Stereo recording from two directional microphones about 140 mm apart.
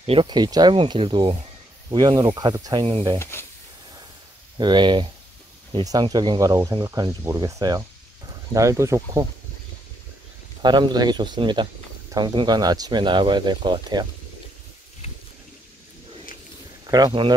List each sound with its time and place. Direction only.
0.0 s speech: 40° right (ahead or behind)
3.2 s speech: 15° left (ahead or behind)
4.6 s speech: 35° right (ahead or behind)
10.6 s speech: 30° right (ahead or behind)
16.8 s speech: 30° right (ahead or behind)